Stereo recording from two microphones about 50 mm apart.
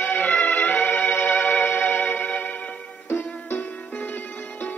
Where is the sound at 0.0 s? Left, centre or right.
Left.